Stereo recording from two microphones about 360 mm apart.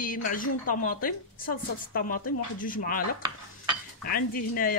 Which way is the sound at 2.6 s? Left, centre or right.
Left.